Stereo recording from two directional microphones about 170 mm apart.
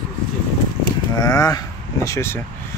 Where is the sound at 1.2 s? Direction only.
20° left (ahead or behind).